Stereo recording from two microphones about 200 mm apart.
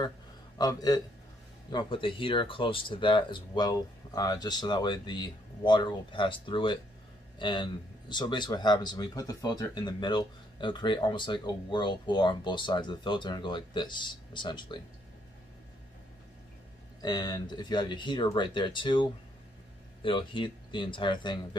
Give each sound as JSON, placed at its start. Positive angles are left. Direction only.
{"t": 0.6, "sound": "speech", "side_deg": 20}
{"t": 17.0, "sound": "speech", "side_deg": 20}